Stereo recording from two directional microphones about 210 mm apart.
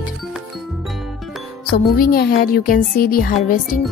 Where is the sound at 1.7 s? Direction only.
45° left (ahead or behind).